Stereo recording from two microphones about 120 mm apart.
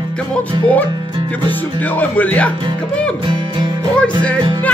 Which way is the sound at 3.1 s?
40° right (ahead or behind).